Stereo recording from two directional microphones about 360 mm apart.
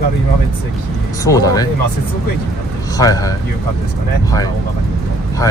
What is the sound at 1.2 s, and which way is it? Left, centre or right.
Speech, centre.